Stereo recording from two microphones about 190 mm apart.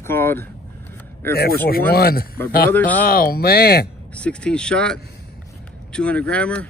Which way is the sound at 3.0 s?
50° left (ahead or behind).